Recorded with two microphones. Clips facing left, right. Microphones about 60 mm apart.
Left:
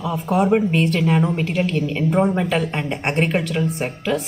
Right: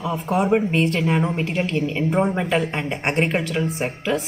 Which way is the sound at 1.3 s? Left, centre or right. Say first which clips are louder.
Left 2 dB; right.